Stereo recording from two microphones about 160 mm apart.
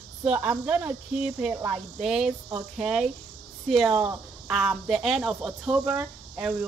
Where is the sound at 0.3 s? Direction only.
10° right (ahead or behind).